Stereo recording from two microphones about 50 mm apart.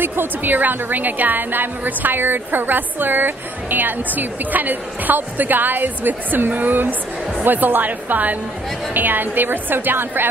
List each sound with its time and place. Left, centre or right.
0.0 s a woman's voice: right